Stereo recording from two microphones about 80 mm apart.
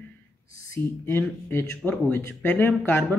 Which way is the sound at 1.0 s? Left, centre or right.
Left.